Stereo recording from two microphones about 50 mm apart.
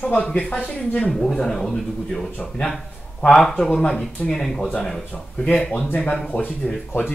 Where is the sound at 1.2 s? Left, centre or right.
Centre; by 5.9 s left.